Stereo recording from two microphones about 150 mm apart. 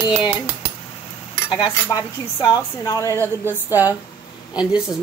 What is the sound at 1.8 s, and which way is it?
Speech, 25° left (ahead or behind).